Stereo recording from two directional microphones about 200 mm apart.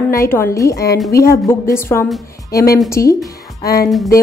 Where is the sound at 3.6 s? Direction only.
50° left (ahead or behind).